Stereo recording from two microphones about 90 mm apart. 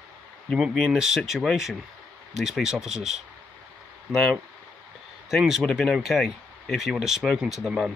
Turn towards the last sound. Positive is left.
turn(degrees=-5)  # may be behind; listen again after turning